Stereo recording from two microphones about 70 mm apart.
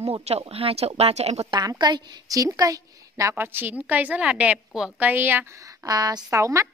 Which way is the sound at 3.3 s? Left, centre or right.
Right.